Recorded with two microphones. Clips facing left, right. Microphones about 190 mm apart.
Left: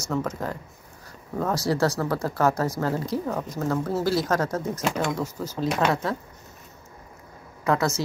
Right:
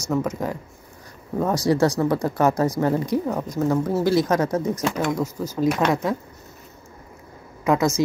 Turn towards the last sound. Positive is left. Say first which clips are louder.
# right 4 dB
turn(degrees=-15)  # may be behind; listen again after turning